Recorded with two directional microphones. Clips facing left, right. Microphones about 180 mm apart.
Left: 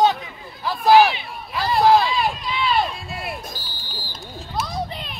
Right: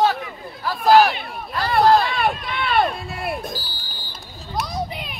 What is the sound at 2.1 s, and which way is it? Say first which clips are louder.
Run: right 1 dB; 60° right (ahead or behind).